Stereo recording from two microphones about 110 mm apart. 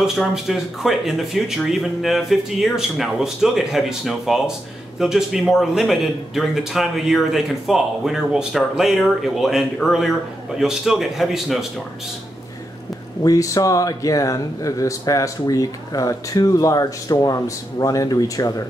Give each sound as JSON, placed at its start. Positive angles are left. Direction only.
{"t": 0.3, "sound": "speech", "side_deg": -5}
{"t": 13.2, "sound": "speech", "side_deg": 30}